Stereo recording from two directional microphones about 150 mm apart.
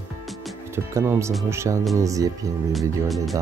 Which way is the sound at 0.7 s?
15° right (ahead or behind).